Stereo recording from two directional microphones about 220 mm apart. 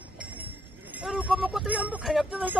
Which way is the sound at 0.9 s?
5° right (ahead or behind).